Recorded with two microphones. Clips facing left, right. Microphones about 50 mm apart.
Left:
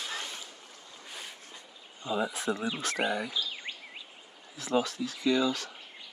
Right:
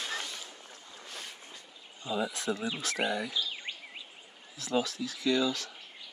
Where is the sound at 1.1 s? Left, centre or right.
Centre.